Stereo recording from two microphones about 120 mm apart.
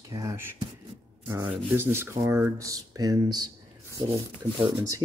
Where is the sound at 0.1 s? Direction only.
25° right (ahead or behind).